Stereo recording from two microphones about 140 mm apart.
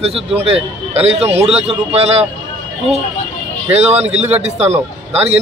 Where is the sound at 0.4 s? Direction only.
50° right (ahead or behind).